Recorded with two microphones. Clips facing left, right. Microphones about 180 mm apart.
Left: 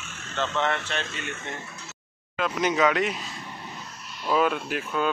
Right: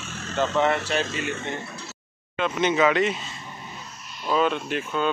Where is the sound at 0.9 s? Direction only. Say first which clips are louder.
Right 6 dB; 5° right (ahead or behind).